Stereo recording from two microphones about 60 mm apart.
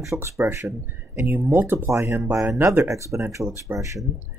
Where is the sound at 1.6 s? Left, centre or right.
Right.